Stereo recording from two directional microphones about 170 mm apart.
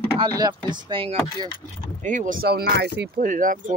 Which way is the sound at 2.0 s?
45° right (ahead or behind).